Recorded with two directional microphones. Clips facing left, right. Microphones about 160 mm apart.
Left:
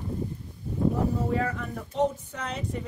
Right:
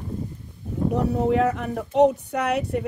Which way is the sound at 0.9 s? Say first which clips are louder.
Right 5 dB; 75° right (ahead or behind).